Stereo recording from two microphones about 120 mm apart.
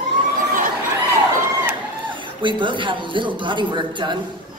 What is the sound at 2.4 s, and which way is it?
A woman's voice, 45° right (ahead or behind).